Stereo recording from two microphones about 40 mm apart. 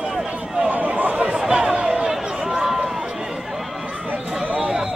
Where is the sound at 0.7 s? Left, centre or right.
Right.